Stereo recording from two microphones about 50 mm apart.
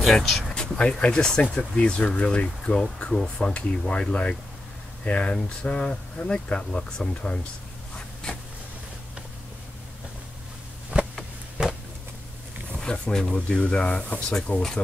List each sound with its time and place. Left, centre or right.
0.0 s speech: centre
10.9 s a sound: centre
12.9 s speech: centre